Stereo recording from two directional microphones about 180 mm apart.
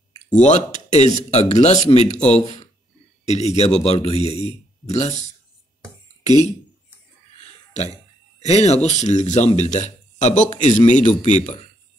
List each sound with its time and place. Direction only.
0.4 s speech: 40° left (ahead or behind)
7.7 s throat clearing: 40° left (ahead or behind)
8.5 s speech: 35° left (ahead or behind)